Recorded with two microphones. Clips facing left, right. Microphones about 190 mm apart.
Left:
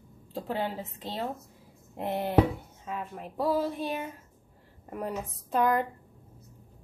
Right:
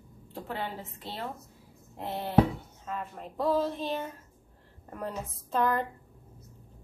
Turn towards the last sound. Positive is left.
turn(degrees=15)  # may be behind; listen again after turning